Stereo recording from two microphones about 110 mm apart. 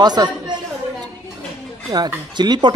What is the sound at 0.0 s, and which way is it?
Speech, 40° right (ahead or behind).